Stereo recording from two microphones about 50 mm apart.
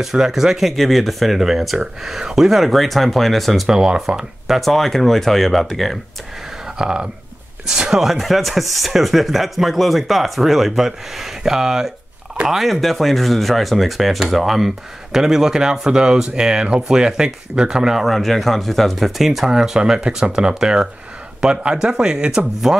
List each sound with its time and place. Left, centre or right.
0.0 s speech: centre
3.6 s speech: centre
4.6 s speech: centre
6.8 s speech: centre
18.0 s speech: centre